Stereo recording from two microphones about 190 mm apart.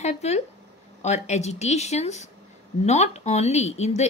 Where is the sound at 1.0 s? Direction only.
35° left (ahead or behind).